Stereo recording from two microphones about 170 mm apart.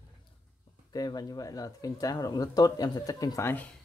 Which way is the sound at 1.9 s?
20° left (ahead or behind).